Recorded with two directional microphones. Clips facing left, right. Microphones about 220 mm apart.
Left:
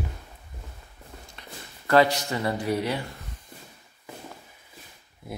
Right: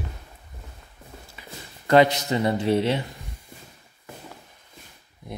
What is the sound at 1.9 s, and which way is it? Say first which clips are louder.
Speech: right 3 dB; 20° right (ahead or behind).